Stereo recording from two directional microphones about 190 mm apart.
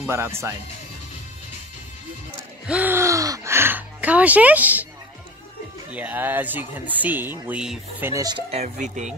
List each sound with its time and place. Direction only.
0.0 s speech: 15° right (ahead or behind)
2.6 s gasp: 10° right (ahead or behind)
5.9 s speech: 10° right (ahead or behind)
8.1 s speech: 20° right (ahead or behind); by 9.1 s 40° right (ahead or behind)